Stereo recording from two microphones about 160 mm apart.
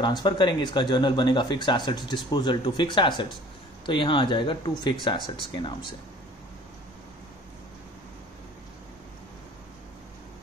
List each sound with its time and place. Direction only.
0.0 s speech: 25° left (ahead or behind)